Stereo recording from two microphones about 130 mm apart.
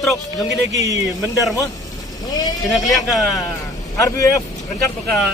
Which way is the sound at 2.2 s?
30° left (ahead or behind).